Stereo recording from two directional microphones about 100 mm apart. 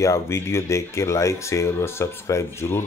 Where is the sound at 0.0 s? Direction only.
30° left (ahead or behind).